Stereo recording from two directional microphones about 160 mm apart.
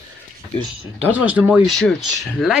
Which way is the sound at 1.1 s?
10° right (ahead or behind).